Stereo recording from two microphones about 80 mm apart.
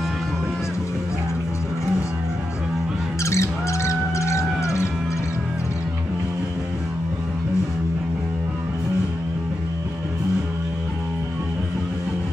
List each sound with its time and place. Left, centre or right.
3.3 s music: left